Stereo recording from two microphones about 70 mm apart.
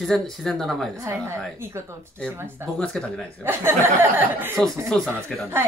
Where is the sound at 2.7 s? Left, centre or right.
Centre.